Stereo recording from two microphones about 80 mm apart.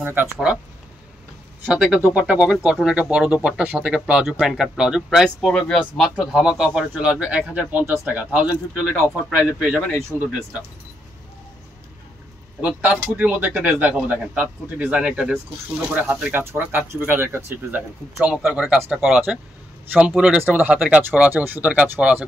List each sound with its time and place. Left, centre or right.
0.0 s speech: right
1.7 s a man's voice: centre
5.2 s speech: centre
5.8 s a man's voice: centre
12.8 s a man's voice: centre
18.2 s a man's voice: centre
20.4 s speech: right